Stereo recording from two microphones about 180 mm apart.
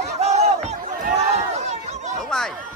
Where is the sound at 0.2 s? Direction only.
35° right (ahead or behind).